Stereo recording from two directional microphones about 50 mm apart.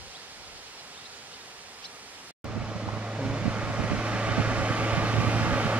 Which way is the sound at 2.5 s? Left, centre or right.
Right.